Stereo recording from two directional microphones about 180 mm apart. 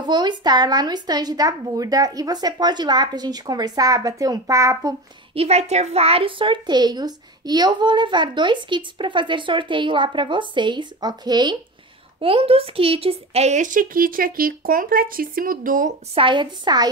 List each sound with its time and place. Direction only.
0.0 s a woman's voice: 25° right (ahead or behind)
5.3 s a woman's voice: 35° right (ahead or behind)
16.2 s a woman's voice: 25° right (ahead or behind)